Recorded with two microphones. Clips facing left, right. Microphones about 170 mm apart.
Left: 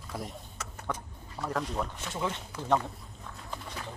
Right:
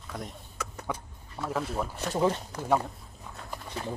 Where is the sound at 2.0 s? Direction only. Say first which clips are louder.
Right 8 dB; 35° right (ahead or behind).